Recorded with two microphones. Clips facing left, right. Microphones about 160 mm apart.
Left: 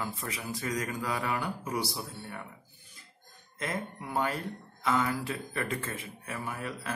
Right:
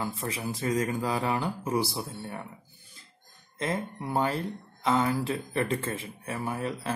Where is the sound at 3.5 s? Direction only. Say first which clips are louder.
Right 4 dB; 30° right (ahead or behind).